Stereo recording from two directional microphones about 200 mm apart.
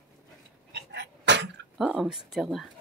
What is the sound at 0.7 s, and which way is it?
Dog, 60° right (ahead or behind).